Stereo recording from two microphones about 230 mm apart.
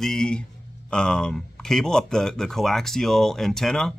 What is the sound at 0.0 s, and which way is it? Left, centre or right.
Speech, centre.